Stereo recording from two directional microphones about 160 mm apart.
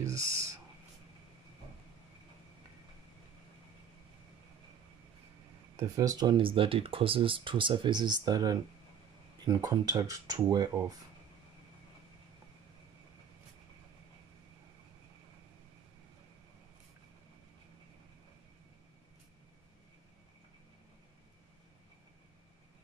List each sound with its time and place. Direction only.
0.3 s owl: 15° right (ahead or behind)
5.8 s speech: 20° right (ahead or behind)